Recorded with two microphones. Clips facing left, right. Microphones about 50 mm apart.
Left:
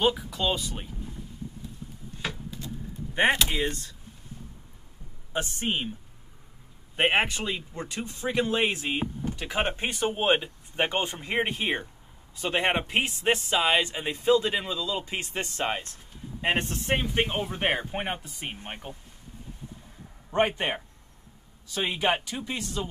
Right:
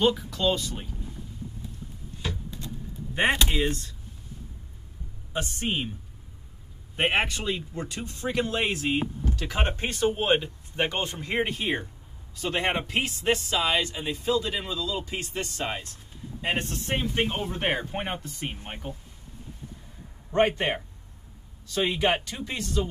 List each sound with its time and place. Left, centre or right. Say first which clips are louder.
0.0 s speech: right 2 dB; centre
3.3 s speech: right 1 dB; centre
5.3 s speech: even; left
7.0 s speech: left 1 dB; left
14.6 s speech: even; left
16.9 s speech: left 1 dB; centre
20.2 s a man's voice: right 2 dB; centre
21.7 s speech: right 2 dB; left